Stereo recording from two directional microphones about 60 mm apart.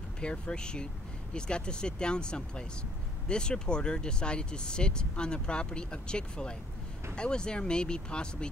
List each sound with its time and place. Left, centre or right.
0.2 s speech: centre